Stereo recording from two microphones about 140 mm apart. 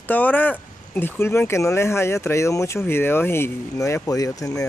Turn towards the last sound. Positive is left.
turn(degrees=25)  # may be behind; listen again after turning